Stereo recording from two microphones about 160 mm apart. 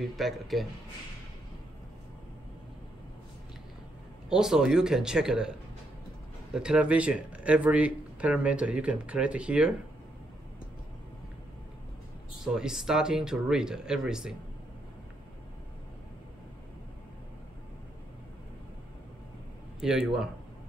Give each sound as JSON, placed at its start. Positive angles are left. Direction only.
{"t": 0.1, "sound": "speech", "side_deg": 0}
{"t": 4.3, "sound": "speech", "side_deg": -5}
{"t": 12.5, "sound": "speech", "side_deg": -5}
{"t": 19.8, "sound": "speech", "side_deg": -5}